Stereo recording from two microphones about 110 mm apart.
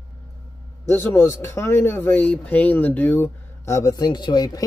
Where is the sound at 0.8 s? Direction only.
20° left (ahead or behind).